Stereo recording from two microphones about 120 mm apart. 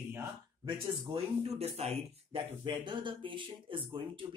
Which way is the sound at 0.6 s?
40° right (ahead or behind).